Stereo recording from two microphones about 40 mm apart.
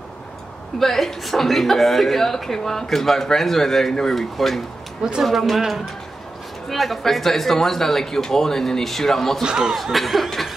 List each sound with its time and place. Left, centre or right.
0.7 s a woman's voice: centre
5.2 s laughter: centre
6.7 s a woman's voice: centre
9.4 s speech: centre
9.8 s laughter: centre